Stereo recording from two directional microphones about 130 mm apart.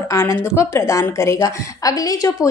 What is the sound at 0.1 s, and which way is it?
A woman's voice, 20° left (ahead or behind).